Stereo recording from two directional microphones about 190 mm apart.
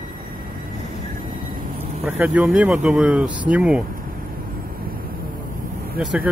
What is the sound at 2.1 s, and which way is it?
Speech, 10° right (ahead or behind).